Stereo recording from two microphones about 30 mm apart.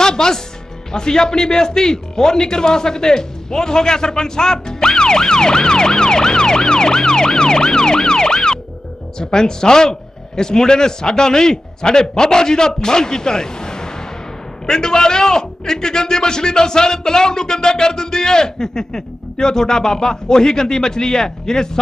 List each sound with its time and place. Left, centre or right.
0.0 s a man's voice: left